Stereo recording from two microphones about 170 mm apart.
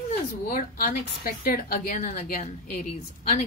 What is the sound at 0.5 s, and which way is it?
A woman's voice, 55° left (ahead or behind).